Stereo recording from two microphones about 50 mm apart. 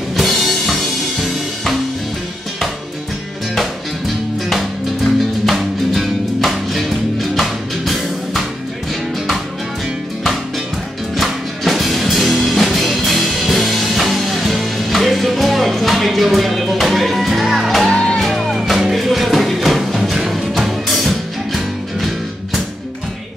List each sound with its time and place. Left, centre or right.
0.1 s music: centre
5.4 s music: centre
11.1 s music: centre
17.8 s music: centre
18.2 s music: centre